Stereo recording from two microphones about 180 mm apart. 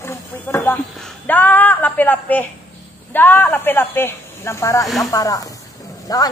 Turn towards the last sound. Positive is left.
turn(degrees=20)  # may be behind; listen again after turning